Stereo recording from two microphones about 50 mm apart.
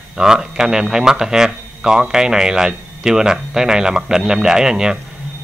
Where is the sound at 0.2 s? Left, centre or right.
Centre.